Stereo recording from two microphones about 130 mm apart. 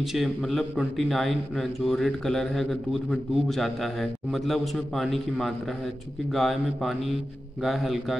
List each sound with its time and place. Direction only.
0.0 s a man's voice: centre (ahead or behind)